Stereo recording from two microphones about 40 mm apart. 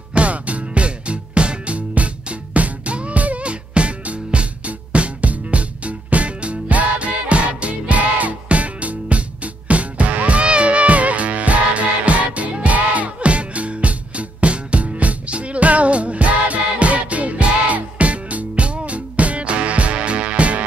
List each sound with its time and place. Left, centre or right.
0.1 s music: right